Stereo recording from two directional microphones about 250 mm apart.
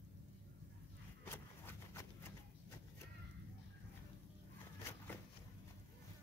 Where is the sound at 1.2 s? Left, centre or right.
Centre.